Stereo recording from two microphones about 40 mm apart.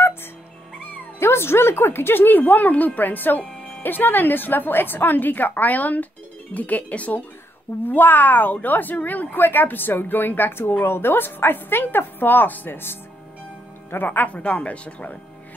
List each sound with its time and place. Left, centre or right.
1.2 s speech: left
7.8 s a woman's voice: left
10.8 s a woman's voice: left
14.2 s speech: left